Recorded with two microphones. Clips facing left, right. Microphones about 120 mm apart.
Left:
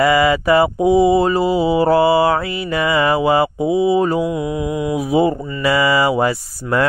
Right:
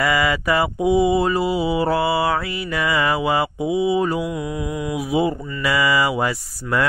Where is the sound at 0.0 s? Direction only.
30° left (ahead or behind).